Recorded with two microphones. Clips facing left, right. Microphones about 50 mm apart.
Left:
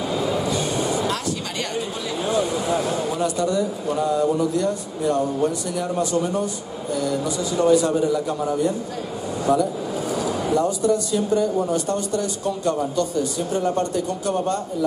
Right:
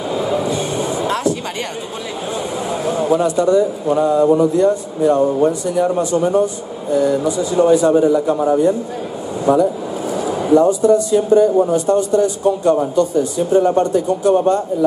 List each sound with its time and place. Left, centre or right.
0.6 s vehicle: right
2.2 s a man's voice: right